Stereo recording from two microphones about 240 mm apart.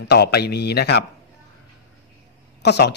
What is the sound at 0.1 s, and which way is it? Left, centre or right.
Speech, left.